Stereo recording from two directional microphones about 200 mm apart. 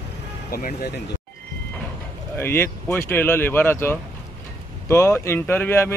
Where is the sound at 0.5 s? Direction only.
45° left (ahead or behind).